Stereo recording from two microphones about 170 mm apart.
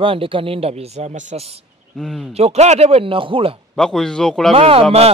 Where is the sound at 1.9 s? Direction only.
Centre (ahead or behind).